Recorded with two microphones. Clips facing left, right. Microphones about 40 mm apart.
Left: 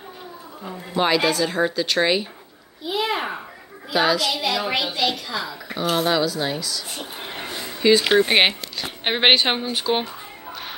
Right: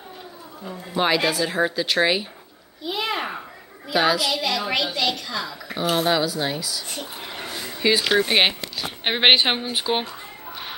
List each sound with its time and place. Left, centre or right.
0.9 s speech: centre
2.8 s a child's voice: centre
5.8 s speech: centre
7.3 s a sound: centre
8.0 s a child's voice: centre